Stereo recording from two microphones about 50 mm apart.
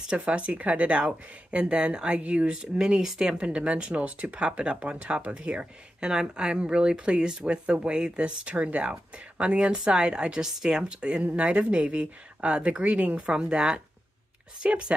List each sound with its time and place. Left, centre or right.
0.2 s speech: right